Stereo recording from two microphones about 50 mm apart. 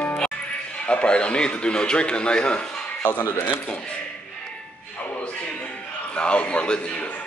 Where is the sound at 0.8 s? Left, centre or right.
Left.